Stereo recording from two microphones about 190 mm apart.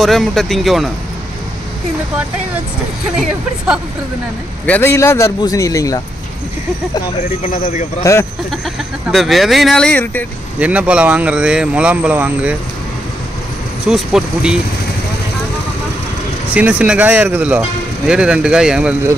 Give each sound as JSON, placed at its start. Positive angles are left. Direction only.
{"t": 0.0, "sound": "speech", "side_deg": 0}
{"t": 3.2, "sound": "speech", "side_deg": -5}
{"t": 4.6, "sound": "a man's voice", "side_deg": 10}
{"t": 7.2, "sound": "speech", "side_deg": 40}
{"t": 8.0, "sound": "a man's voice", "side_deg": 15}
{"t": 9.0, "sound": "speech", "side_deg": 0}
{"t": 10.6, "sound": "speech", "side_deg": -5}
{"t": 13.8, "sound": "speech", "side_deg": 0}
{"t": 16.5, "sound": "speech", "side_deg": -5}